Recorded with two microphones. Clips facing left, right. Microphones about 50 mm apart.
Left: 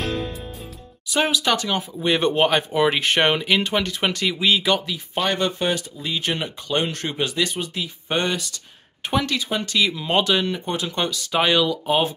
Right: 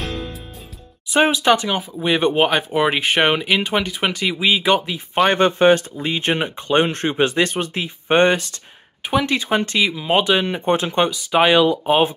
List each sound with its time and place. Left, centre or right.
1.1 s speech: right
4.7 s speech: right
5.1 s speech: right
9.0 s speech: centre
9.4 s speech: right
9.8 s speech: centre
11.6 s speech: right